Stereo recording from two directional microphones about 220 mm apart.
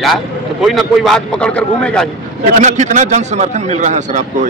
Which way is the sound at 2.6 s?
35° right (ahead or behind).